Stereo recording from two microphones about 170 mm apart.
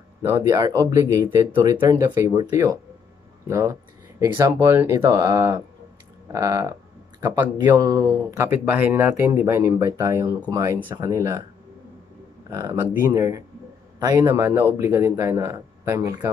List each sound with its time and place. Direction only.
0.2 s a man's voice: 20° right (ahead or behind)
12.4 s a man's voice: 20° right (ahead or behind)